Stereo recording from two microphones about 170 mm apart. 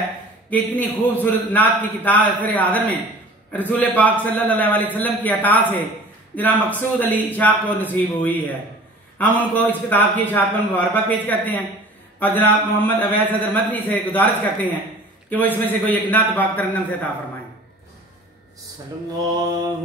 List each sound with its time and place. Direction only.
0.5 s a man's voice: 10° left (ahead or behind)
19.3 s mantra: 25° right (ahead or behind)